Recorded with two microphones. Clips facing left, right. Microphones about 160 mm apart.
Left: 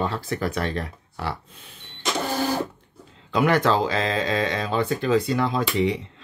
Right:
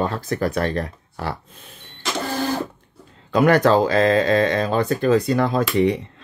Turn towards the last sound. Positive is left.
turn(degrees=-45)  # may be behind; listen again after turning